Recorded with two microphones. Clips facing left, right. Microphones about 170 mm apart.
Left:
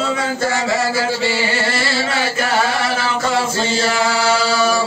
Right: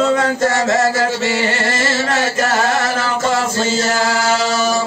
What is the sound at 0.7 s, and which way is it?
Chant, 45° right (ahead or behind).